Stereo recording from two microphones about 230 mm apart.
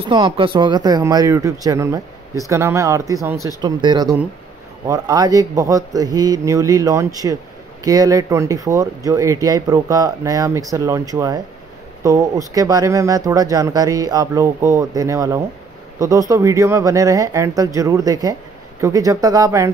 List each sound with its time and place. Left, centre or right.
0.0 s speech: right